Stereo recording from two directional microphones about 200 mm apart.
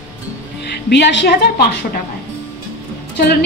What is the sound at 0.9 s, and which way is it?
Speech, 60° left (ahead or behind).